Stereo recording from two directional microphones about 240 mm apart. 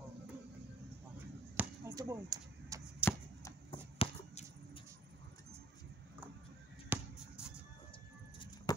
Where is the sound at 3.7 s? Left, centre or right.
Left.